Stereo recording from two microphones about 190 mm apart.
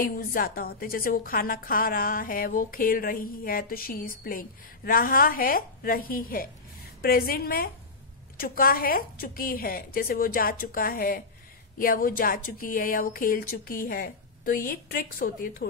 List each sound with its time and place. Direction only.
0.0 s a woman's voice: 50° left (ahead or behind)